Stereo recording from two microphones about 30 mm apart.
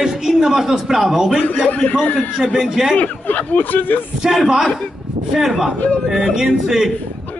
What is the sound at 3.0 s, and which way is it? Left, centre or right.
Speech, left.